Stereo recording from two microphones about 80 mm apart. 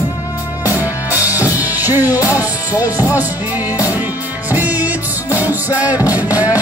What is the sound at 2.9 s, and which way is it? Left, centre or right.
Music, right.